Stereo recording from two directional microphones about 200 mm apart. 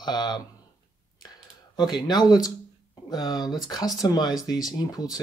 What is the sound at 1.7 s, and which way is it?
Speech, 20° left (ahead or behind).